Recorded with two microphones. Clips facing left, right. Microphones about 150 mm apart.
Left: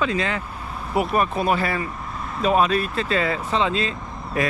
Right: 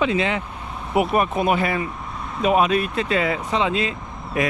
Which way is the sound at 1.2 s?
20° right (ahead or behind).